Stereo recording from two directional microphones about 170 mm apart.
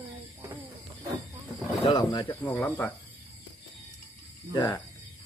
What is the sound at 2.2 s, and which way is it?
Speech, 10° left (ahead or behind).